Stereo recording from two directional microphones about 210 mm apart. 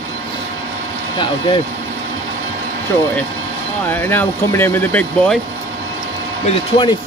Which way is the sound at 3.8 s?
10° left (ahead or behind).